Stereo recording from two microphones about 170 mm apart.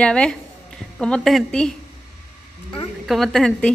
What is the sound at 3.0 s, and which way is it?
Speech, centre (ahead or behind).